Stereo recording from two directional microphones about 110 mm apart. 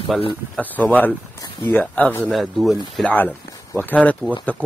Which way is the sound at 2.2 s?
Centre (ahead or behind).